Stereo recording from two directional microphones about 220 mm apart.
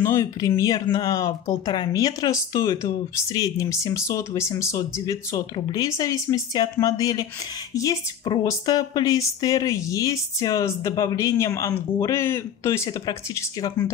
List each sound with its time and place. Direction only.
0.0 s speech: 15° left (ahead or behind)